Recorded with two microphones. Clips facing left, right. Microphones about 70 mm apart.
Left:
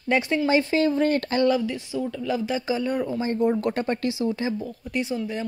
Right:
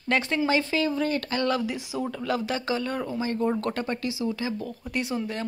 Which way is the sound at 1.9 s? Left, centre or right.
Right.